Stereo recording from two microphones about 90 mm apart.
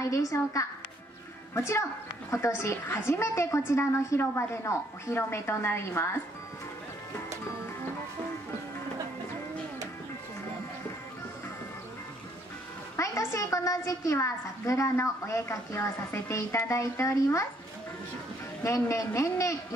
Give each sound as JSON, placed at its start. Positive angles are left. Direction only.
{"t": 0.0, "sound": "a woman's voice", "side_deg": 40}
{"t": 12.9, "sound": "a woman's voice", "side_deg": 35}
{"t": 18.6, "sound": "a woman's voice", "side_deg": 35}